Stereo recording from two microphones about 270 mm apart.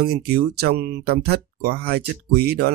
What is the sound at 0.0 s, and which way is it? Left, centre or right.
Speech, right.